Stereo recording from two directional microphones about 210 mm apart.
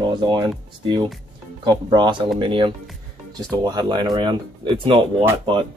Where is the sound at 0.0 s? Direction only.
20° right (ahead or behind).